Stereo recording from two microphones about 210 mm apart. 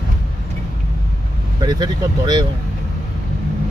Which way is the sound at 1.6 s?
20° right (ahead or behind).